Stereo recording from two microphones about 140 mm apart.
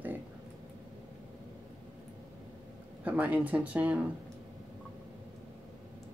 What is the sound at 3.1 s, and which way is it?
Speech, 10° right (ahead or behind).